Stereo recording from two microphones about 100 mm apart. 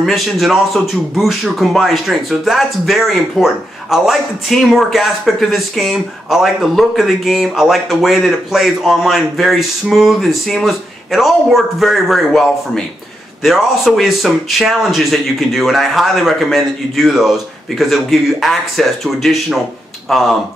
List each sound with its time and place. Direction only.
0.0 s speech: centre (ahead or behind)